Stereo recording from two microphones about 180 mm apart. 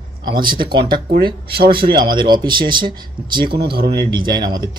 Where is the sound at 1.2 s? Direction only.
25° right (ahead or behind).